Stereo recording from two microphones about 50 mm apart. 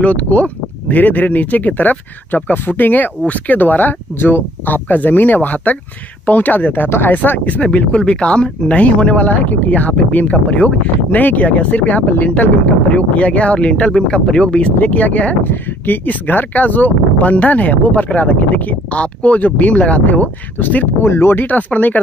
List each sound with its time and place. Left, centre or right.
0.0 s speech: left
14.8 s speech: left
21.0 s speech: left
21.5 s speech: left